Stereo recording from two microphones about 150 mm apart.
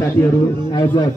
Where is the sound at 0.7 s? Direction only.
30° left (ahead or behind).